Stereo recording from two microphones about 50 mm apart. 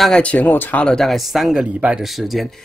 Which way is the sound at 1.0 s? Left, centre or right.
Centre.